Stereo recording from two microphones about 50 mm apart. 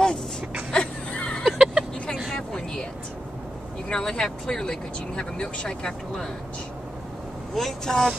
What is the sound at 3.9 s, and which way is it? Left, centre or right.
Speech, centre.